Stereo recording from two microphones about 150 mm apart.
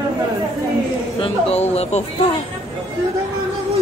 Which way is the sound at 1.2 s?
45° left (ahead or behind).